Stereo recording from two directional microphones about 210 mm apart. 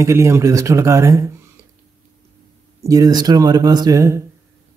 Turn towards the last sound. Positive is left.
turn(degrees=-15)  # may be behind; listen again after turning